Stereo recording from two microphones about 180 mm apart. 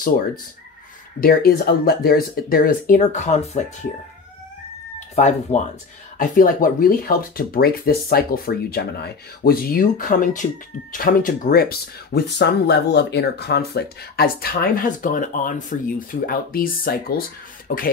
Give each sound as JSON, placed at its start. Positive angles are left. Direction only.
{"t": 1.2, "sound": "speech", "side_deg": 60}
{"t": 5.1, "sound": "speech", "side_deg": 40}
{"t": 17.6, "sound": "beatboxing", "side_deg": 50}